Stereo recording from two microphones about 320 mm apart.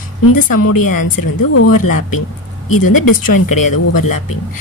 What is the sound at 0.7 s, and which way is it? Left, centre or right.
Speech, left.